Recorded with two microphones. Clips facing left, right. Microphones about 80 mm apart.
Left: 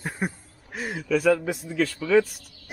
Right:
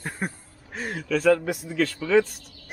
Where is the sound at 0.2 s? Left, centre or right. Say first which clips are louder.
Left 2 dB; centre.